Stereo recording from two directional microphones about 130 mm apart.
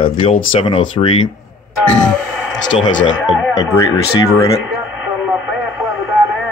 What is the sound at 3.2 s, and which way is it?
Speech, 5° left (ahead or behind).